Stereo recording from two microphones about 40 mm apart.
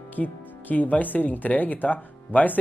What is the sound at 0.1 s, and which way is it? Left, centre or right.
Speech, left.